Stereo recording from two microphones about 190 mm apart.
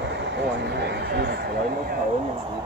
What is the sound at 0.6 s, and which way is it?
Speech, 60° right (ahead or behind).